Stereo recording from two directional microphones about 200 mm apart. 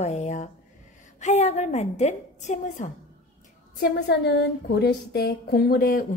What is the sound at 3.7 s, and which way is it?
Speech, 50° left (ahead or behind).